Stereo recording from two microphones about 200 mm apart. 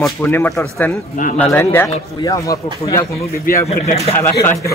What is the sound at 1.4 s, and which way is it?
A man's voice, 10° left (ahead or behind).